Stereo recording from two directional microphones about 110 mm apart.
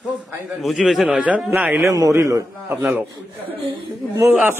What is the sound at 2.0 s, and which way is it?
Speech, 30° right (ahead or behind).